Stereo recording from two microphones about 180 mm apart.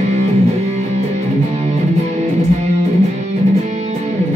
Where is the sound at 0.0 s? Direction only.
40° right (ahead or behind).